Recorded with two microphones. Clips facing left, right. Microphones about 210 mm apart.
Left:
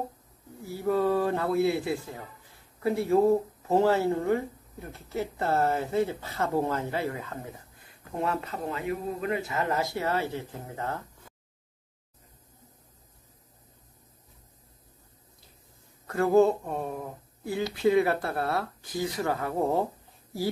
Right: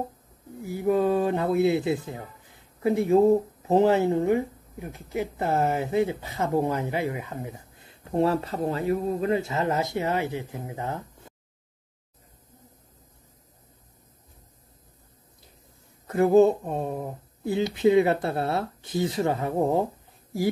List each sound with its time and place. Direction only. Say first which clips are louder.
0.7 s speech: right 3 dB; 15° right (ahead or behind)
8.0 s speech: right 7 dB; 30° right (ahead or behind); by 11.3 s 15° right (ahead or behind)
16.1 s speech: right 3 dB; 20° right (ahead or behind)